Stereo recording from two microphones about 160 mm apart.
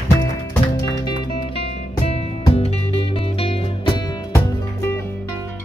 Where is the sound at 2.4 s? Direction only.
35° left (ahead or behind).